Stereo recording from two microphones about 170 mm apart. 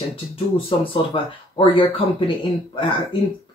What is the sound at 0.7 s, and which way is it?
Speech, 30° left (ahead or behind).